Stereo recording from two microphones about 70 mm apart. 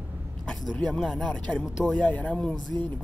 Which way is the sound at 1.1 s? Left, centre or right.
Centre.